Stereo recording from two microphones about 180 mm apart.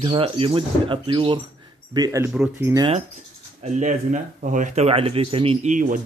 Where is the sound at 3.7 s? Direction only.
40° right (ahead or behind).